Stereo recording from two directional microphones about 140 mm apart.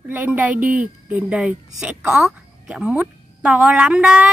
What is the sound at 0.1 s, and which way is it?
A woman's voice, 10° right (ahead or behind).